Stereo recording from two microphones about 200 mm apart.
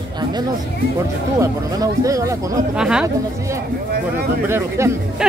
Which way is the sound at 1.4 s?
15° right (ahead or behind).